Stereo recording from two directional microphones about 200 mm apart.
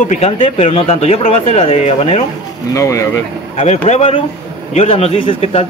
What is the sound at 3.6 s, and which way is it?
A man's voice, 30° left (ahead or behind).